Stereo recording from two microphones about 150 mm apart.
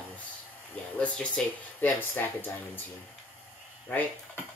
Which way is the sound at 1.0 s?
10° left (ahead or behind).